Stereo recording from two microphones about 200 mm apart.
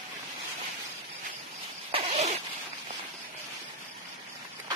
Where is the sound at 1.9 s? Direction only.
30° right (ahead or behind).